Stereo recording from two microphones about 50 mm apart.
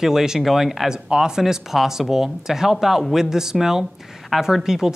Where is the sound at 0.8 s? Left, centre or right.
Centre.